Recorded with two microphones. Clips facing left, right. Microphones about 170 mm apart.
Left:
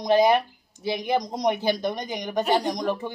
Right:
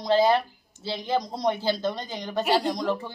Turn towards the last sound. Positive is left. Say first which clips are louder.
# even
turn(degrees=15)  # may be behind; listen again after turning